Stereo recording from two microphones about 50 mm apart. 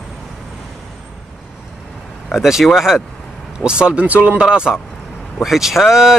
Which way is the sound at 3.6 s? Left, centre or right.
Centre.